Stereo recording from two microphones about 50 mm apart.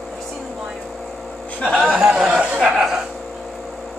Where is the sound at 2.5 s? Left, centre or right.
Centre.